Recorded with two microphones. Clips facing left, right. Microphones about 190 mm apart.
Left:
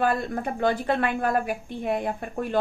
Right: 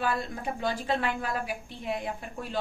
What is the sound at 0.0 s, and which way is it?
A woman's voice, 55° left (ahead or behind).